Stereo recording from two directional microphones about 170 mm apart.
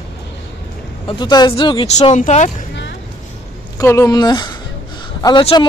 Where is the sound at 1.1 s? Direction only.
25° left (ahead or behind).